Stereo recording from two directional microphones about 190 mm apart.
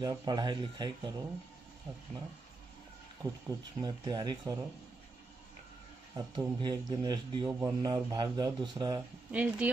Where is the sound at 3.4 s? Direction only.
20° right (ahead or behind).